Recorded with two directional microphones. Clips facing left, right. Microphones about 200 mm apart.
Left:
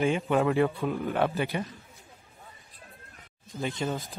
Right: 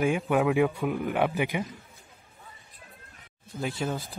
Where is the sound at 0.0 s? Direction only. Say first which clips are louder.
Even; 15° right (ahead or behind).